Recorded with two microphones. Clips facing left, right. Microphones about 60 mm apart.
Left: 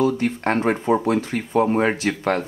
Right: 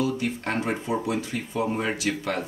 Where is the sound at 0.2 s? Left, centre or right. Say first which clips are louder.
Left 7 dB; left.